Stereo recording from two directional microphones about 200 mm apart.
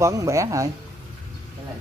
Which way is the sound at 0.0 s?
15° right (ahead or behind).